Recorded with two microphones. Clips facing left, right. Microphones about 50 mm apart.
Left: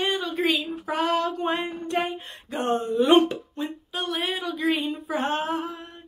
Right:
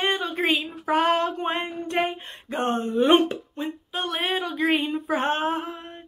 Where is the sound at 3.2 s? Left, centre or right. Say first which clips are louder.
Even; right.